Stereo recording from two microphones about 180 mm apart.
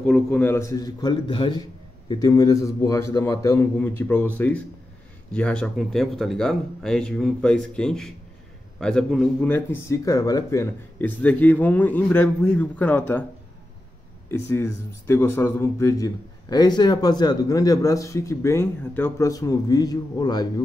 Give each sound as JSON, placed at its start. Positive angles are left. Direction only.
{"t": 0.0, "sound": "speech", "side_deg": 5}
{"t": 5.3, "sound": "speech", "side_deg": 5}
{"t": 9.5, "sound": "speech", "side_deg": 15}
{"t": 14.3, "sound": "speech", "side_deg": 15}